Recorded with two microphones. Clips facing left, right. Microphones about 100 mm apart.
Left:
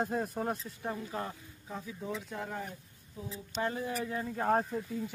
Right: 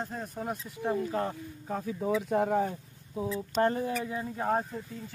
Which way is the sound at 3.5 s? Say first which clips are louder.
Right 7 dB; 40° right (ahead or behind).